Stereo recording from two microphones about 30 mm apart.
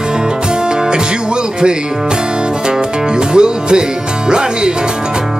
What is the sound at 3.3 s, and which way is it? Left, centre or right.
Music, right.